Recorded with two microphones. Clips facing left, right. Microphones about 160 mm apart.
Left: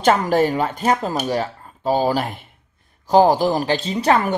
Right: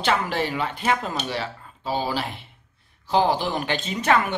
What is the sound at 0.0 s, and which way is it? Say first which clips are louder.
A woman's voice: left 8 dB; 45° left (ahead or behind).